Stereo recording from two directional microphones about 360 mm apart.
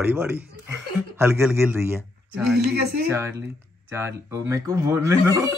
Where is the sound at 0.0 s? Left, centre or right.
Centre.